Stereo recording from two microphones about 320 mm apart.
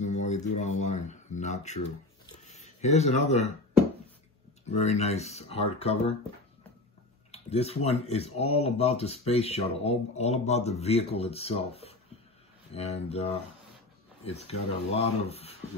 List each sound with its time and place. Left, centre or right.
0.0 s speech: left
4.6 s speech: centre
7.2 s speech: centre